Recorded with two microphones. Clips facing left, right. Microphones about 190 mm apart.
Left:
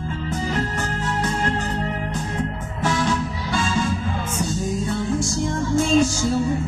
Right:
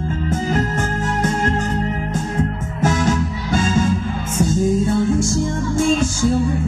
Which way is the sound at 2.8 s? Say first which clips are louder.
Right 4 dB; 45° right (ahead or behind).